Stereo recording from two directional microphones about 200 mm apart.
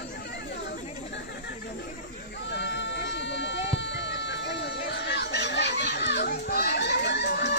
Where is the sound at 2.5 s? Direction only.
60° left (ahead or behind).